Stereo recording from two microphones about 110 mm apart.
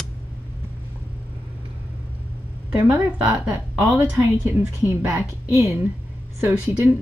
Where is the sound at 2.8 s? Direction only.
10° right (ahead or behind).